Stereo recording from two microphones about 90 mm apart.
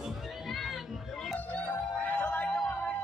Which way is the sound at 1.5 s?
15° left (ahead or behind).